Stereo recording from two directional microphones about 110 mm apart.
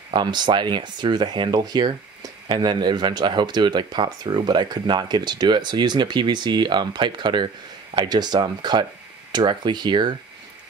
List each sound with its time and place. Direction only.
0.1 s speech: 40° right (ahead or behind)